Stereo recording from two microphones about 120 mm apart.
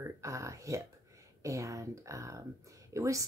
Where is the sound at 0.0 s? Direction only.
25° right (ahead or behind).